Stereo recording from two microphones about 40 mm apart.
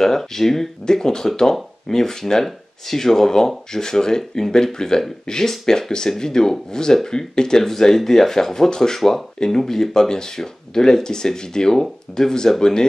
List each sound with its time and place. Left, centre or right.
0.0 s speech: centre